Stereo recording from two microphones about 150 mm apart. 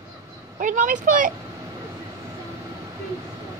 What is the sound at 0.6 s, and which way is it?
Speech, 60° right (ahead or behind).